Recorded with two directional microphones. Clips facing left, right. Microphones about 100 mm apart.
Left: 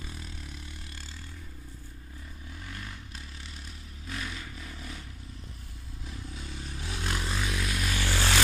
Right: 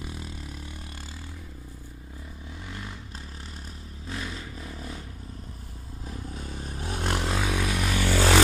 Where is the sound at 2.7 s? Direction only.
20° right (ahead or behind).